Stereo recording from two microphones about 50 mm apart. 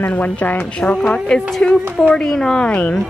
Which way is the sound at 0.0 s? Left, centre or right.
Left.